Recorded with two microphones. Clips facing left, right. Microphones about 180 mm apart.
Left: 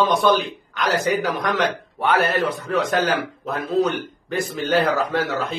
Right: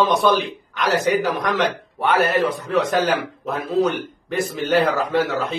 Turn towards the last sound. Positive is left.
turn(degrees=0)  # may be behind; listen again after turning